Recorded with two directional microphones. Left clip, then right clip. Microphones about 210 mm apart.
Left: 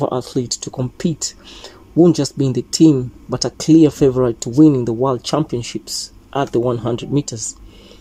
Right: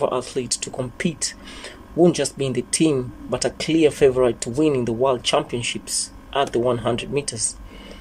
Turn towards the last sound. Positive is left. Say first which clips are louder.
# left 3 dB
turn(degrees=20)  # may be behind; listen again after turning